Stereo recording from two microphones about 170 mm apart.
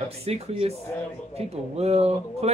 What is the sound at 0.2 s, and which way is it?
Speech, 35° right (ahead or behind).